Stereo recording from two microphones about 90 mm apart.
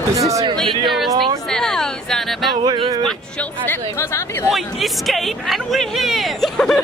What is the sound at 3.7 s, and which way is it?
Speech, 30° left (ahead or behind).